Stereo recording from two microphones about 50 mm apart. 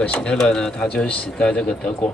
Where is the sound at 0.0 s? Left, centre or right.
Left.